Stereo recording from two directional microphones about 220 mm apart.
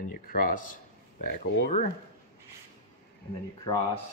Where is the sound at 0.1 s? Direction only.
40° left (ahead or behind).